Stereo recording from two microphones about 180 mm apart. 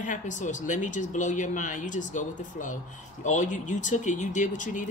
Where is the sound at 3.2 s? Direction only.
45° left (ahead or behind).